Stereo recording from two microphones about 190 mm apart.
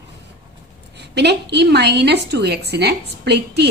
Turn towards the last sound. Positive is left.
turn(degrees=-60)  # may be behind; listen again after turning